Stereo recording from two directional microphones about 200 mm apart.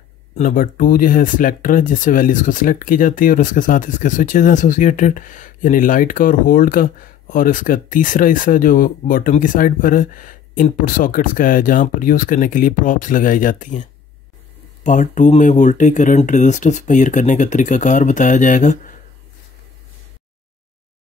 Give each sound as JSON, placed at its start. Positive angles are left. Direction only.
{"t": 0.4, "sound": "speech", "side_deg": 45}